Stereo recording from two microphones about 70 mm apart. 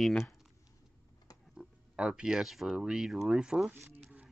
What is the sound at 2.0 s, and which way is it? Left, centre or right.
Speech, centre.